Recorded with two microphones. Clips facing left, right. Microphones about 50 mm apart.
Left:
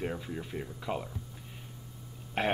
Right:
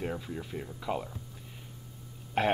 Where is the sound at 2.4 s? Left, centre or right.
Centre.